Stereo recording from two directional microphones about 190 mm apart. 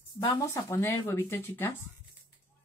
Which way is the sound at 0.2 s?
15° left (ahead or behind).